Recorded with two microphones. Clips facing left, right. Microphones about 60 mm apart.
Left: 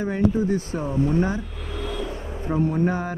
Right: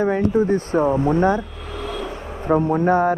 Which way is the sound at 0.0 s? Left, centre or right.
Right.